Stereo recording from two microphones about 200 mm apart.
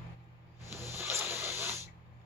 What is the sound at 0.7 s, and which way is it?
Rub, 15° right (ahead or behind).